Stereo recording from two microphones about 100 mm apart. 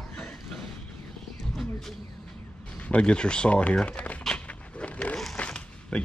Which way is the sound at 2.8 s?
10° left (ahead or behind).